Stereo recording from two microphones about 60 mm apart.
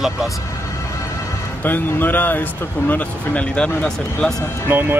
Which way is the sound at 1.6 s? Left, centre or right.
Left.